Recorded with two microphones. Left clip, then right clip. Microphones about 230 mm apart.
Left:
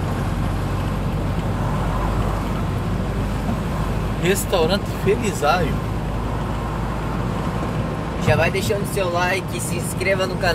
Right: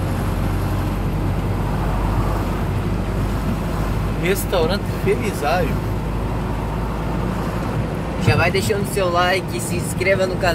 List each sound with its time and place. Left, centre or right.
4.2 s speech: left
8.3 s speech: right